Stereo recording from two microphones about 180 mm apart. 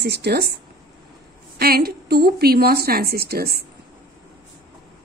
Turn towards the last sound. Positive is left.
turn(degrees=-60)  # may be behind; listen again after turning